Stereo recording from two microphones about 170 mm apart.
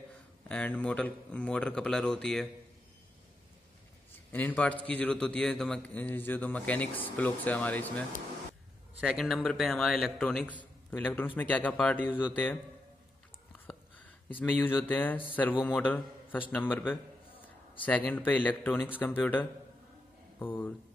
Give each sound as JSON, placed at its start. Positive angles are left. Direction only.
{"t": 0.5, "sound": "speech", "side_deg": 5}
{"t": 4.3, "sound": "a man's voice", "side_deg": 10}
{"t": 9.0, "sound": "a man's voice", "side_deg": 0}
{"t": 13.7, "sound": "a man's voice", "side_deg": 10}